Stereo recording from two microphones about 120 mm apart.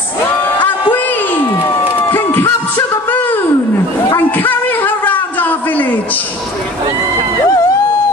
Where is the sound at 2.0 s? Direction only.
20° left (ahead or behind).